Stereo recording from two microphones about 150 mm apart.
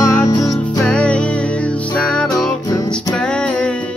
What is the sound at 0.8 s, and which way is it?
Music, 10° left (ahead or behind).